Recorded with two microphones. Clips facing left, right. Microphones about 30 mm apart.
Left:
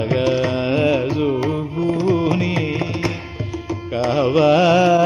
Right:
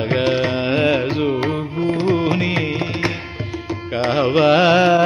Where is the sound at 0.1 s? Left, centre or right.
Right.